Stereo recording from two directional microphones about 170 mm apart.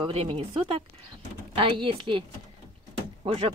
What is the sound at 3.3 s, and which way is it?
Speech, 35° right (ahead or behind).